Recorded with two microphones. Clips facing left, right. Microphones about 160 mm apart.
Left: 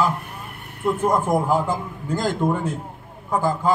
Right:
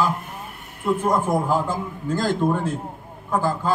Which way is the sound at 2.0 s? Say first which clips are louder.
Right 1 dB; 15° left (ahead or behind).